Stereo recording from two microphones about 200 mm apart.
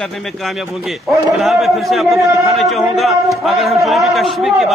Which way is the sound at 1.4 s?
Centre (ahead or behind).